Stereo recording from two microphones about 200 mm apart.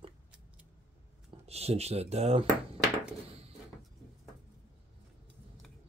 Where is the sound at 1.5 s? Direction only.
30° right (ahead or behind).